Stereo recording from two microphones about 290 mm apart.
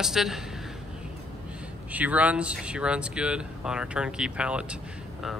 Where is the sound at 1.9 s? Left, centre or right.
Centre.